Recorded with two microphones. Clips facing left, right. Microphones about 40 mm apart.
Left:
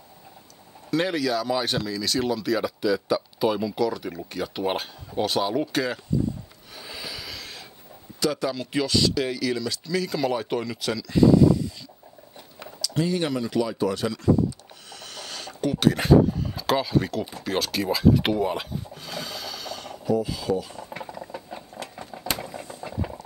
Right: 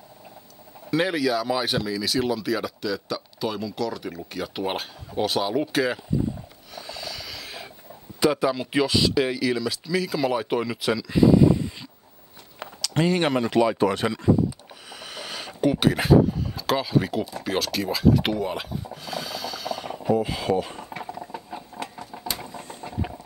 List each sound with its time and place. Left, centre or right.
0.8 s speech: centre
6.7 s a sound: centre
8.2 s speech: centre
12.8 s speech: right
14.9 s a sound: centre
17.4 s speech: centre
20.0 s speech: right
20.9 s mechanisms: centre
22.1 s a sound: centre